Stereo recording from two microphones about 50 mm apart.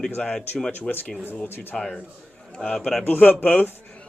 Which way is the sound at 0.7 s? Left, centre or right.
Left.